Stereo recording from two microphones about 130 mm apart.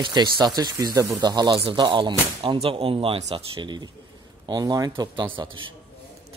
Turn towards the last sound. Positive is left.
turn(degrees=-30)  # may be behind; listen again after turning